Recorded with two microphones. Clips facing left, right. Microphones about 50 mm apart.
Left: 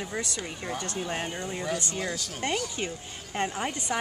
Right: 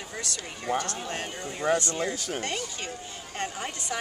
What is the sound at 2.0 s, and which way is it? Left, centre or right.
Speech, right.